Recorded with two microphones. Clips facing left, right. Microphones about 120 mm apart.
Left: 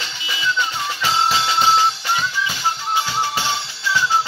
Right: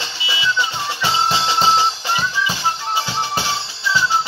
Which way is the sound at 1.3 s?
30° right (ahead or behind).